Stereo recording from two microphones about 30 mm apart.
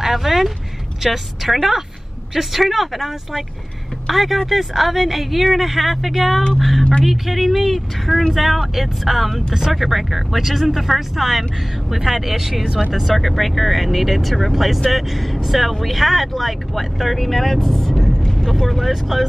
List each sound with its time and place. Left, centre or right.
0.0 s speech: centre
6.8 s speech: left
7.1 s speech: centre